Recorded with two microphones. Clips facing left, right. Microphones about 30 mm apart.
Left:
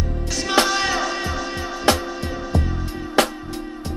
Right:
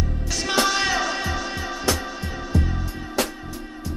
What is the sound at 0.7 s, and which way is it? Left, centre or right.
Music, centre.